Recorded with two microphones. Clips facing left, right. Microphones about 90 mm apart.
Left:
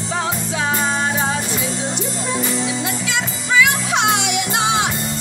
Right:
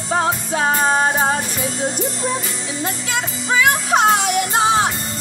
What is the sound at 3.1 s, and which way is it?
Music, 45° right (ahead or behind).